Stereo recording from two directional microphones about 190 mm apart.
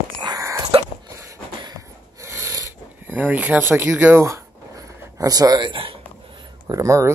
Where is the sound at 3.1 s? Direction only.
10° right (ahead or behind).